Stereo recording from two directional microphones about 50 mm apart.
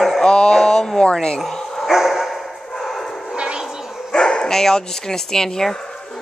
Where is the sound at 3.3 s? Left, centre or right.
Right.